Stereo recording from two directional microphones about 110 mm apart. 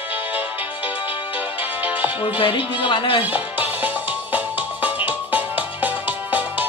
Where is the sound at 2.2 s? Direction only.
55° left (ahead or behind).